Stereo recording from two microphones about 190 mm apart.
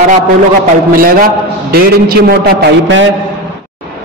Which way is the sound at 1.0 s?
50° right (ahead or behind).